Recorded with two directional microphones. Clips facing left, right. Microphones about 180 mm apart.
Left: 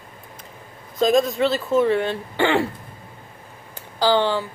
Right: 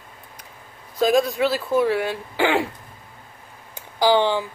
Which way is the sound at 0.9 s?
5° right (ahead or behind).